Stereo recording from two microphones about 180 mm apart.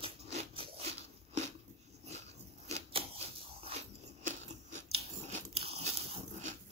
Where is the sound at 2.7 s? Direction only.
35° right (ahead or behind).